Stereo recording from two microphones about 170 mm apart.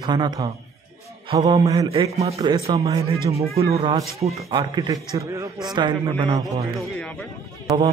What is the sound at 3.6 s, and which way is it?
Speech, 35° right (ahead or behind).